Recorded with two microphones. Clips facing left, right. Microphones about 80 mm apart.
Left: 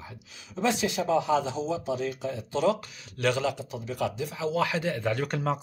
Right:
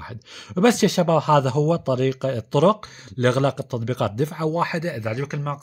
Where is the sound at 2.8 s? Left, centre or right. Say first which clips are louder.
Right 7 dB; right.